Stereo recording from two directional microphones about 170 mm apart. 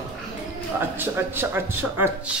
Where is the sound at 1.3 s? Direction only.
15° right (ahead or behind).